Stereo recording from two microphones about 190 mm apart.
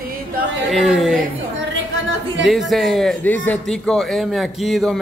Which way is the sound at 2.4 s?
Centre (ahead or behind).